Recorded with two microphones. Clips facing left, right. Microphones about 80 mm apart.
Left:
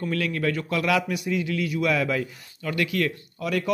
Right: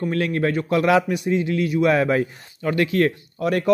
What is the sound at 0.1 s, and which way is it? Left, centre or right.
A man's voice, right.